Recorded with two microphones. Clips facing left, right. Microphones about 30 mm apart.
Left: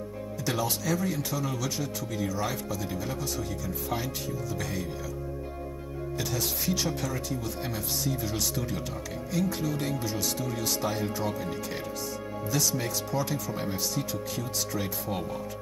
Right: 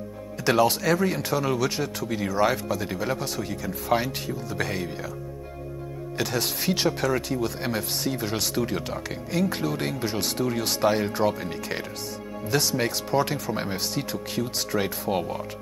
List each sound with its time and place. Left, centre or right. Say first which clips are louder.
0.4 s speech: right 10 dB; right
6.1 s speech: right 5 dB; right